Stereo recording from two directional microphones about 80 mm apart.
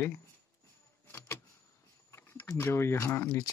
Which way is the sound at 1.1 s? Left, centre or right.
Left.